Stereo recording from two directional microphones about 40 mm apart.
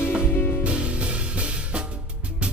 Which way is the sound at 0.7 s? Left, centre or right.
Right.